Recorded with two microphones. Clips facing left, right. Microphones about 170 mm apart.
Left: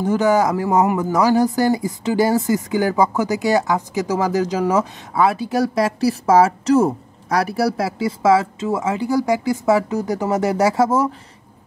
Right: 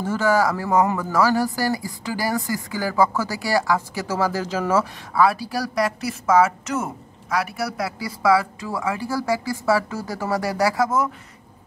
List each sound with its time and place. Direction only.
0.0 s speech: 20° left (ahead or behind)